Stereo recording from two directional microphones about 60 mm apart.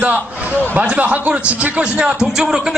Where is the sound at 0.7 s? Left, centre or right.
Right.